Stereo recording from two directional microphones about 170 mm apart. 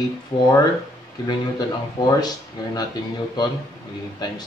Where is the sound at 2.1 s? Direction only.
25° left (ahead or behind).